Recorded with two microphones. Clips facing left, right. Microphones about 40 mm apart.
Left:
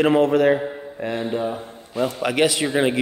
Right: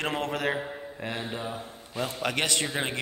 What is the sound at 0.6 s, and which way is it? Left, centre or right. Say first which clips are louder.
Mantra: left 6 dB; centre.